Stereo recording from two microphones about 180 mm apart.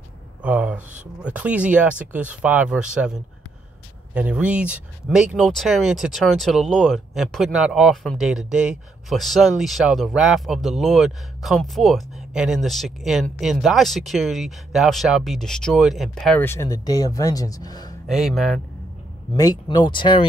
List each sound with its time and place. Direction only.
0.4 s speech: 5° right (ahead or behind); by 17.9 s 20° left (ahead or behind)
18.0 s speech: centre (ahead or behind)
19.3 s speech: 20° left (ahead or behind)